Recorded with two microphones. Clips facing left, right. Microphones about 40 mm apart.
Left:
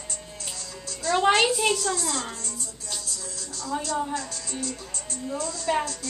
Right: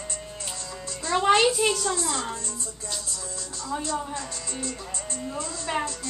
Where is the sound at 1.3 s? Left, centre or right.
Centre.